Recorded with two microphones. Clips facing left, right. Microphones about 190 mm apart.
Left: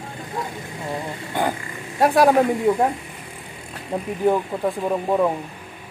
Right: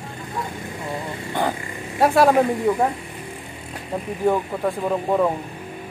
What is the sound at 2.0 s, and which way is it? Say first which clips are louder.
Speech: even; centre (ahead or behind).